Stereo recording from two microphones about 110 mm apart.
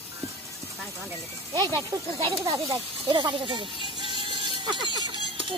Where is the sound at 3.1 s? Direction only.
45° right (ahead or behind).